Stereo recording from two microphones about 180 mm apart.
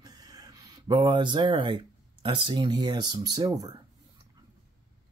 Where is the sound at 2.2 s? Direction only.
25° right (ahead or behind).